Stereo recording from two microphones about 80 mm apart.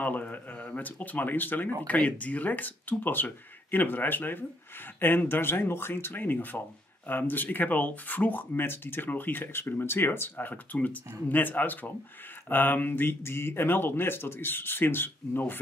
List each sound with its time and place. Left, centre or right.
0.0 s speech: left